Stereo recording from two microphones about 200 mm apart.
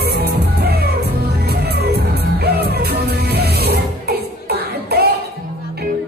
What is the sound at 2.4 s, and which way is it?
Music, 50° right (ahead or behind).